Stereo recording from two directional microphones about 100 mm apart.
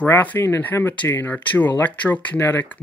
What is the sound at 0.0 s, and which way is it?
Speech, 15° left (ahead or behind).